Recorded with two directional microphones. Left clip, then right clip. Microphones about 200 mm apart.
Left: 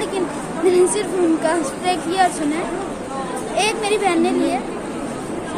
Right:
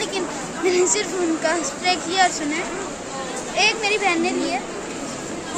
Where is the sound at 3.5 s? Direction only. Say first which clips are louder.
Even; 25° left (ahead or behind).